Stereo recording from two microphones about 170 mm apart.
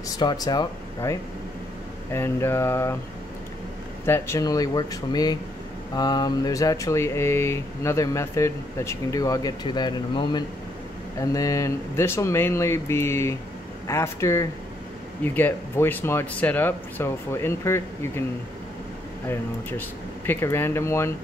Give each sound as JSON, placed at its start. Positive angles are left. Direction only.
{"t": 0.2, "sound": "speech", "side_deg": 25}
{"t": 2.1, "sound": "speech", "side_deg": 15}
{"t": 4.0, "sound": "speech", "side_deg": 15}
{"t": 20.2, "sound": "speech", "side_deg": 15}